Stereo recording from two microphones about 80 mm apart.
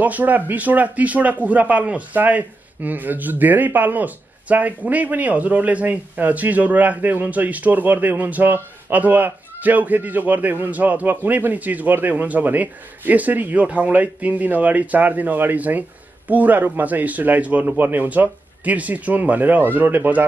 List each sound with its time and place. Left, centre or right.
0.0 s a man's voice: centre